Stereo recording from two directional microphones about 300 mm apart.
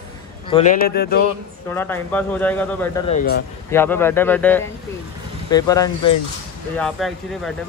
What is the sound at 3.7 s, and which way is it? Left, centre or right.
Speech, centre.